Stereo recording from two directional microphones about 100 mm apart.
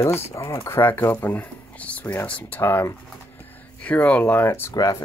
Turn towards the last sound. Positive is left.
turn(degrees=40)  # may be behind; listen again after turning